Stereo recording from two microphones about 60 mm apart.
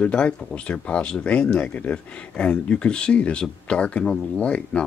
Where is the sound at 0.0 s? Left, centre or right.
Centre.